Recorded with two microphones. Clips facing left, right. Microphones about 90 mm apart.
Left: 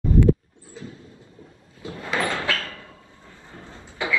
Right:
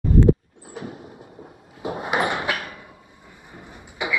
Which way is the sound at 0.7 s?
70° right (ahead or behind).